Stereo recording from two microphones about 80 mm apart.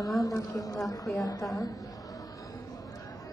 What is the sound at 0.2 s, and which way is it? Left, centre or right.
A woman's voice, left.